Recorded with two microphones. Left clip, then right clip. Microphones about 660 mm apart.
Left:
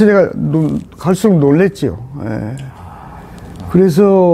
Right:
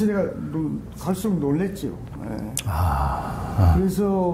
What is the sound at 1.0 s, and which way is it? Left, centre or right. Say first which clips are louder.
Speech: left 14 dB; left.